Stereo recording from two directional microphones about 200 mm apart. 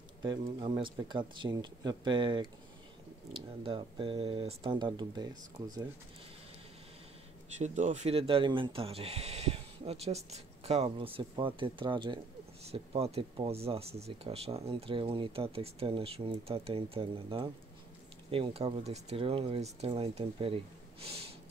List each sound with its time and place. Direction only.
0.2 s speech: 25° right (ahead or behind)
7.5 s speech: 35° right (ahead or behind)